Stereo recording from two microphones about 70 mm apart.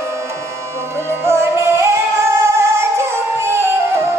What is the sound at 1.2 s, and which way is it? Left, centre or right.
Music, right.